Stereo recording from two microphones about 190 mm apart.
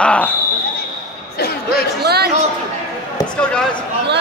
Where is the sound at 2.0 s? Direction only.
55° right (ahead or behind).